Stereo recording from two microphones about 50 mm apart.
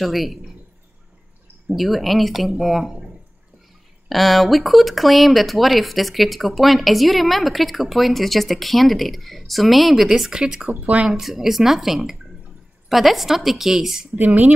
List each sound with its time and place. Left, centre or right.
0.0 s speech: centre
1.7 s speech: centre
4.1 s speech: centre
10.7 s speech: right
11.1 s speech: centre
14.1 s speech: right